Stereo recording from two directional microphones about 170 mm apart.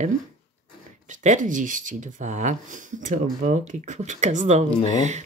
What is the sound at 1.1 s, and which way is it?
Speech, 50° right (ahead or behind).